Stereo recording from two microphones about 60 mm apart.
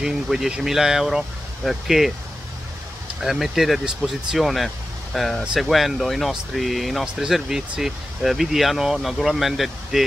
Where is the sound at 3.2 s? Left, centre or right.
Centre.